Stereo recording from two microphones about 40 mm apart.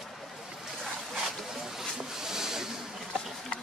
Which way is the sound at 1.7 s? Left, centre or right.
Centre.